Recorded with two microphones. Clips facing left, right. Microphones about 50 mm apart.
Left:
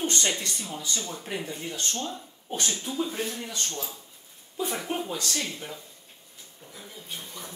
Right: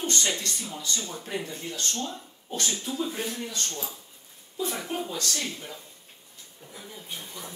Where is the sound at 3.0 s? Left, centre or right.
Centre.